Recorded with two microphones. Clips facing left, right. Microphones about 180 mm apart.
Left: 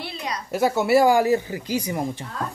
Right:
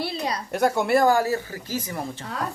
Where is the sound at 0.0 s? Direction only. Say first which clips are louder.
Right 4 dB; 35° right (ahead or behind).